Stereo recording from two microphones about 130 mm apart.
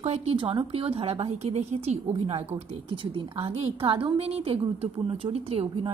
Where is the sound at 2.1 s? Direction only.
45° right (ahead or behind).